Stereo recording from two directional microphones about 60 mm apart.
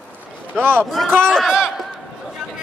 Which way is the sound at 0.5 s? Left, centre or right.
Right.